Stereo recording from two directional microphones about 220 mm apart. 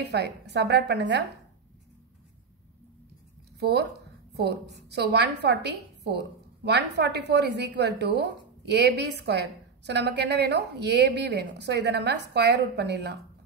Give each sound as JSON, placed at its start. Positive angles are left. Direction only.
{"t": 0.0, "sound": "a woman's voice", "side_deg": -50}
{"t": 3.5, "sound": "a woman's voice", "side_deg": -50}